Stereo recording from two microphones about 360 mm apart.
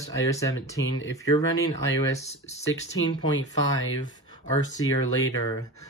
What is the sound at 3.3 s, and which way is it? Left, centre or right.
Speech, left.